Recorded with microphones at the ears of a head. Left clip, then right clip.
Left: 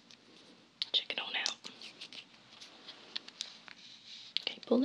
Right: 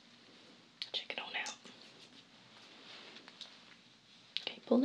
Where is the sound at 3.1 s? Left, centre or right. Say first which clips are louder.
Left 9 dB; left.